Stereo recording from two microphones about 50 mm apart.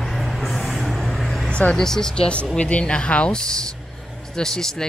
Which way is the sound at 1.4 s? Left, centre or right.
Left.